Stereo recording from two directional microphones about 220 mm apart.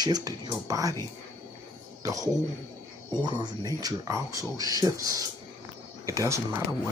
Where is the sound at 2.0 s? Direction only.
15° right (ahead or behind).